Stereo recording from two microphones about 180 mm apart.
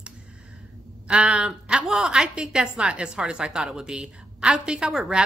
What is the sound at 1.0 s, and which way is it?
A woman's voice, 5° right (ahead or behind).